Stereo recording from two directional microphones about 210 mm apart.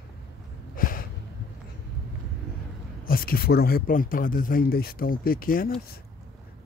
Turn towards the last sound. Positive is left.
turn(degrees=45)  # may be behind; listen again after turning